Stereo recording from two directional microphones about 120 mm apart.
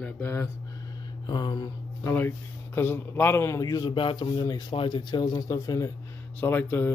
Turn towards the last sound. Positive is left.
turn(degrees=20)  # may be behind; listen again after turning